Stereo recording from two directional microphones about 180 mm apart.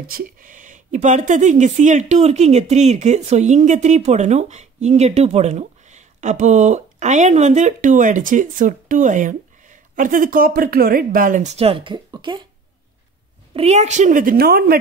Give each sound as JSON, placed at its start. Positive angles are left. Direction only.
{"t": 0.1, "sound": "speech", "side_deg": -50}
{"t": 13.5, "sound": "a woman's voice", "side_deg": -35}